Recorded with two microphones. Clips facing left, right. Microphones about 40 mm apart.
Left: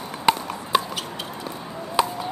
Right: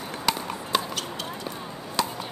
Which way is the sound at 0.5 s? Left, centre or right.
Centre.